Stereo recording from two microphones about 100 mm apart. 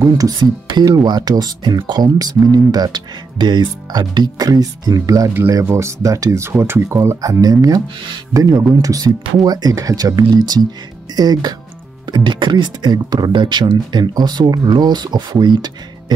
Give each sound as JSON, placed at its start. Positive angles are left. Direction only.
{"t": 0.0, "sound": "speech", "side_deg": -35}
{"t": 12.1, "sound": "speech", "side_deg": -50}